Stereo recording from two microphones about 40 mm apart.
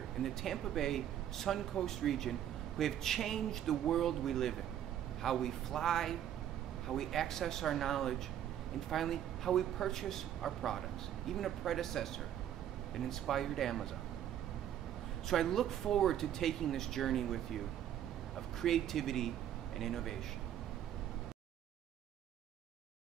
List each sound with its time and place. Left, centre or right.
0.2 s speech: centre
15.2 s a man's voice: centre